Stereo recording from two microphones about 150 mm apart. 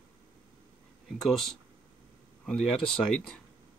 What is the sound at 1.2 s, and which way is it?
Speech, centre (ahead or behind).